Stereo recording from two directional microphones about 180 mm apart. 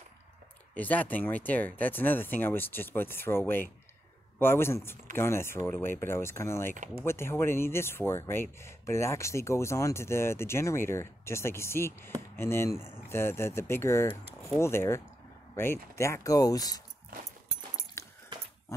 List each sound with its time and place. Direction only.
0.7 s speech: 10° left (ahead or behind)
18.0 s keys jangling: 15° left (ahead or behind)